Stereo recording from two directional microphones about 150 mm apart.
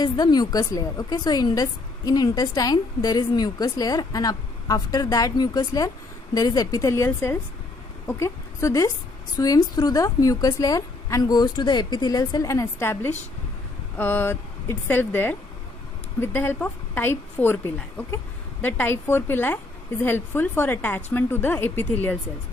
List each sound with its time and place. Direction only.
0.0 s a woman's voice: 25° left (ahead or behind); by 22.2 s 10° left (ahead or behind)